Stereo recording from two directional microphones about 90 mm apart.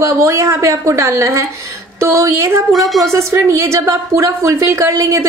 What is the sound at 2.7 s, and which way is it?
Speech, centre (ahead or behind).